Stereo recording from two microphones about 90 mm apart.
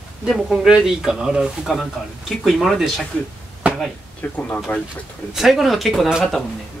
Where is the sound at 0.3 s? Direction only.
5° right (ahead or behind).